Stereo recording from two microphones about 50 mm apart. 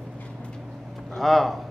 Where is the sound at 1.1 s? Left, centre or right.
Centre.